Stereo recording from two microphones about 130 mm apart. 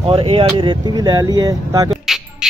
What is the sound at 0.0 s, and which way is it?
Speech, 45° right (ahead or behind).